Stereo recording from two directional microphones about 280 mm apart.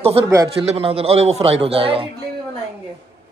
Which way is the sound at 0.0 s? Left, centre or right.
Centre.